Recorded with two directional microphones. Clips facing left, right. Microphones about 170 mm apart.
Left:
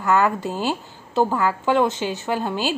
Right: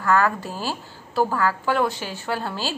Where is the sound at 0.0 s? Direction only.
20° left (ahead or behind).